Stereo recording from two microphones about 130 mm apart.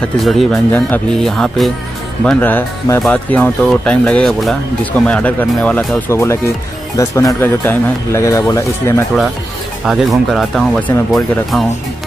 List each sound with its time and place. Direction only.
0.2 s speech: centre (ahead or behind)
0.5 s speech: 15° left (ahead or behind)
1.2 s speech: 5° left (ahead or behind)
2.2 s speech: 15° left (ahead or behind)
9.8 s speech: centre (ahead or behind)